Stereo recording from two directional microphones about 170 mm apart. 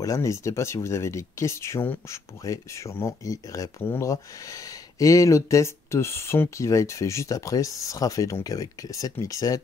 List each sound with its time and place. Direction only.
0.0 s speech: 20° left (ahead or behind)